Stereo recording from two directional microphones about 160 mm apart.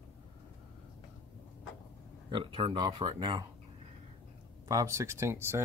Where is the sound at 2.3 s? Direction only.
30° right (ahead or behind).